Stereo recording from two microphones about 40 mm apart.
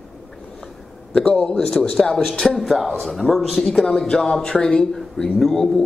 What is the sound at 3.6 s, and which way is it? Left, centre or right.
Speech, centre.